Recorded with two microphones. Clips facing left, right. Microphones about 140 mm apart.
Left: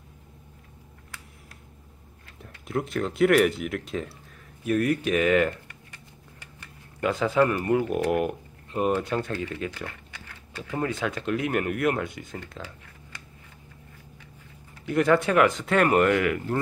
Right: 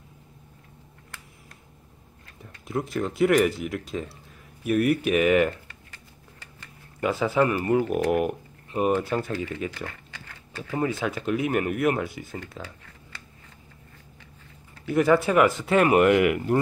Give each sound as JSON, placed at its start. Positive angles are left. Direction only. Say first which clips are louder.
{"t": 2.4, "sound": "speech", "louder": "even", "side_deg": 0}
{"t": 7.0, "sound": "speech", "louder": "even", "side_deg": -5}
{"t": 9.8, "sound": "a sound", "louder": "right 1 dB", "side_deg": 10}
{"t": 10.6, "sound": "speech", "louder": "right 2 dB", "side_deg": -5}
{"t": 14.9, "sound": "speech", "louder": "right 1 dB", "side_deg": -5}